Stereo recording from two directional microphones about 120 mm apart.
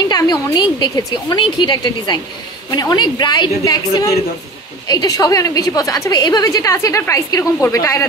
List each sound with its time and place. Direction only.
0.1 s a woman's voice: 35° left (ahead or behind)